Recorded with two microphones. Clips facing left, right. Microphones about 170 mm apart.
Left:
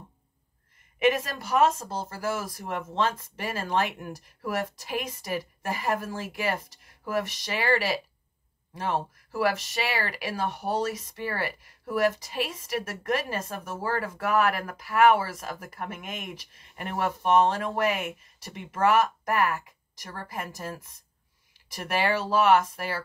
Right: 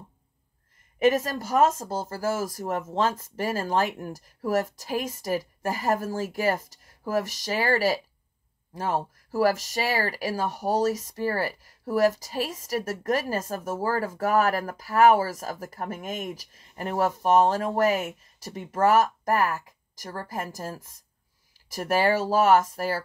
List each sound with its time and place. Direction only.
0.9 s speech: 40° right (ahead or behind)